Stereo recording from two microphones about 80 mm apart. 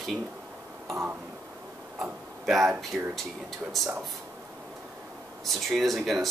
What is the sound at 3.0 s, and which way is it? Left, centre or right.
Speech, centre.